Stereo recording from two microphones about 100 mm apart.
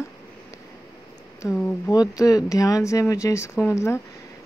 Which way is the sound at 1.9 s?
35° left (ahead or behind).